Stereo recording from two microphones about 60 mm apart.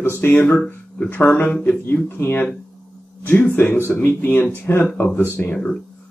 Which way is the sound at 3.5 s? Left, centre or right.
Left.